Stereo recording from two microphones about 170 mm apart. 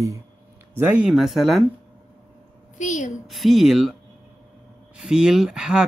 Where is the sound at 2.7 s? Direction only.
45° left (ahead or behind).